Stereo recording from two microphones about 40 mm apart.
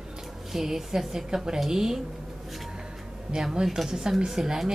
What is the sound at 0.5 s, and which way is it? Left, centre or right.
Speech, centre.